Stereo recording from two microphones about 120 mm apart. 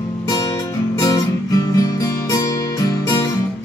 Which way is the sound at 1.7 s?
30° left (ahead or behind).